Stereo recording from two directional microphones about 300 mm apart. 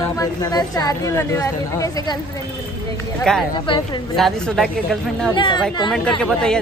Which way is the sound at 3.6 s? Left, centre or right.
Centre.